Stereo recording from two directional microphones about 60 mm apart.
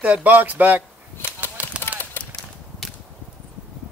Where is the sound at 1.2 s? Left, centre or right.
Left.